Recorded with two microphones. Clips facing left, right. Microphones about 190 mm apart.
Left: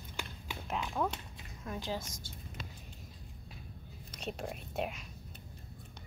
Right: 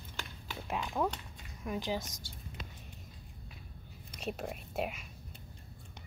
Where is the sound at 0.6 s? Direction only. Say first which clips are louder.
Right 1 dB; 10° right (ahead or behind).